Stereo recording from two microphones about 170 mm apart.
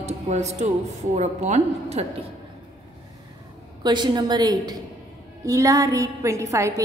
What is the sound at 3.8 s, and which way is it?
A woman's voice, 25° right (ahead or behind).